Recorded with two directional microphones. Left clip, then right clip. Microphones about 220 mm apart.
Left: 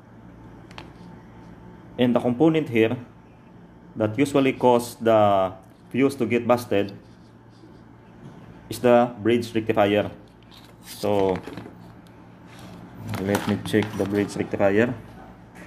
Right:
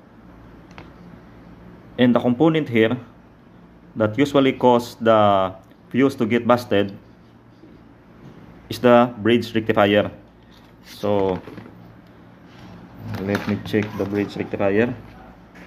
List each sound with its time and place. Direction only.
2.0 s speech: 15° right (ahead or behind)
4.0 s speech: 15° right (ahead or behind)
8.6 s speech: 20° right (ahead or behind)
13.1 s speech: 5° left (ahead or behind)